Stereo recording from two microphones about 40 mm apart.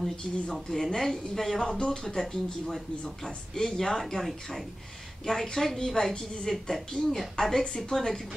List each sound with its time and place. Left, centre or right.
0.3 s speech: centre
7.6 s a woman's voice: left